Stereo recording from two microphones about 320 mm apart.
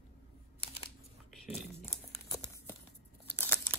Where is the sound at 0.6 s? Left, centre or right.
Centre.